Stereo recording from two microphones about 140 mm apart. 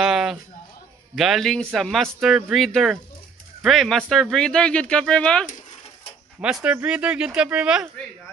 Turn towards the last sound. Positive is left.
turn(degrees=-5)  # may be behind; listen again after turning